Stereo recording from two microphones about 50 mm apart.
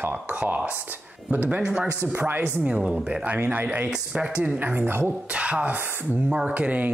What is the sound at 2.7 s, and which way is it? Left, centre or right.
Speech, right.